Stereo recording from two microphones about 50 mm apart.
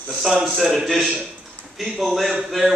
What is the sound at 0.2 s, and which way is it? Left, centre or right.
A man's voice, centre.